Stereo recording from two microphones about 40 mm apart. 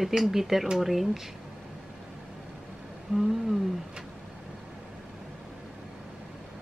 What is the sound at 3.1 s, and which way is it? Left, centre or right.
Speech, centre.